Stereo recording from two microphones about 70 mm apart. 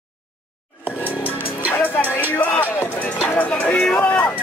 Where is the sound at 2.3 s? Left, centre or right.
Left.